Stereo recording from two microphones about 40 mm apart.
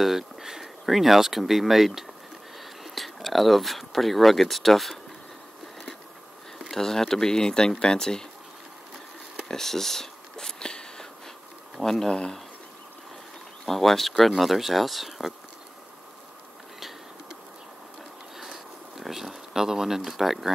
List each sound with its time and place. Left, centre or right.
0.0 s speech: centre
6.6 s speech: centre
9.4 s a sound: centre
11.8 s speech: centre
12.1 s speech: left
13.7 s speech: centre
18.4 s a sound: centre